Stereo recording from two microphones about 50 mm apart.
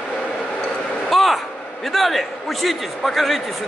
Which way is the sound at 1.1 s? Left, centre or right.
Centre.